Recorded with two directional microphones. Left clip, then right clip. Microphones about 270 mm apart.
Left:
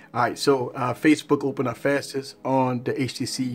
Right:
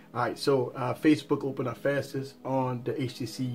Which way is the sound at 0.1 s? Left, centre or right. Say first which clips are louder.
Left 6 dB; centre.